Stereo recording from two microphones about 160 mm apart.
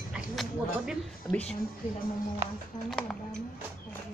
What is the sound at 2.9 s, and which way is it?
Speech, 5° left (ahead or behind).